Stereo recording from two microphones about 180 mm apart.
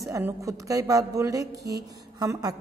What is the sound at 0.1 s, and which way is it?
A woman's voice, 15° right (ahead or behind).